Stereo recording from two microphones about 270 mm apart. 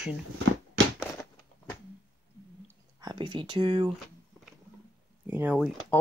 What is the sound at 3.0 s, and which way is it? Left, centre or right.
Speech, centre.